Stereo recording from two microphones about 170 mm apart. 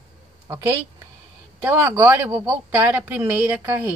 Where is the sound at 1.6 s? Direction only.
15° right (ahead or behind).